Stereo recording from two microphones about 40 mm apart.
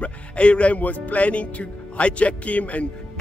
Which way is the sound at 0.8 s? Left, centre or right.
Left.